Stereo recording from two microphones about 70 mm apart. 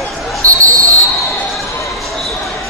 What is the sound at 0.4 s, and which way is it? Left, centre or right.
Basketball bounce, left.